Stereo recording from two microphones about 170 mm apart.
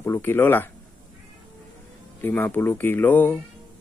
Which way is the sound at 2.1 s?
10° left (ahead or behind).